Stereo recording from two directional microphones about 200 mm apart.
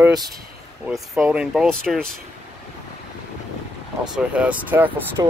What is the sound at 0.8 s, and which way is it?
Speech, 5° right (ahead or behind).